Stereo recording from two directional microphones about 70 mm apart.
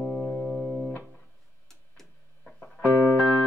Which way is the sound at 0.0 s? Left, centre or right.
Left.